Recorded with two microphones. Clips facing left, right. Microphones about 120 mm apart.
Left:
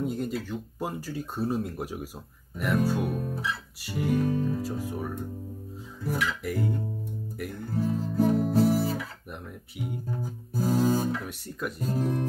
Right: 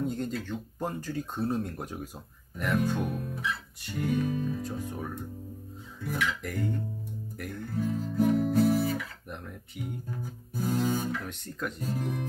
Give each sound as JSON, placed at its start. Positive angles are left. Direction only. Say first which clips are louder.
{"t": 0.0, "sound": "speech", "louder": "left 2 dB", "side_deg": 5}
{"t": 3.2, "sound": "music", "louder": "left 2 dB", "side_deg": 35}
{"t": 3.8, "sound": "speech", "louder": "left 3 dB", "side_deg": 5}
{"t": 4.2, "sound": "music", "louder": "left 3 dB", "side_deg": 35}
{"t": 4.6, "sound": "speech", "louder": "left 3 dB", "side_deg": 5}
{"t": 6.0, "sound": "music", "louder": "left 2 dB", "side_deg": 35}
{"t": 6.4, "sound": "speech", "louder": "left 3 dB", "side_deg": 5}
{"t": 7.7, "sound": "guitar", "louder": "left 3 dB", "side_deg": 35}
{"t": 9.3, "sound": "speech", "louder": "left 1 dB", "side_deg": 5}
{"t": 10.2, "sound": "music", "louder": "left 4 dB", "side_deg": 35}
{"t": 11.2, "sound": "speech", "louder": "left 1 dB", "side_deg": 5}
{"t": 11.9, "sound": "music", "louder": "left 7 dB", "side_deg": 35}